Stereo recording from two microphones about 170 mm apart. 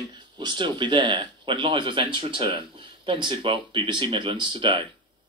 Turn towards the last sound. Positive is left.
turn(degrees=-30)  # may be behind; listen again after turning